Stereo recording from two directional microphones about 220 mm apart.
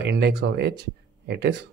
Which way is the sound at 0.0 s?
50° right (ahead or behind).